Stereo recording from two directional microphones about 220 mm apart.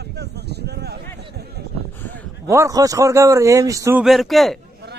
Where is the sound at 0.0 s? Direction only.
50° right (ahead or behind).